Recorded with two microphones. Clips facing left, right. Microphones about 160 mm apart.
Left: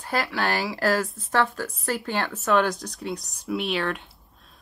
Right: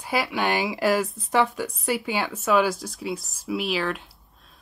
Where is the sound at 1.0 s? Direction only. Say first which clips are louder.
Right 2 dB; centre (ahead or behind).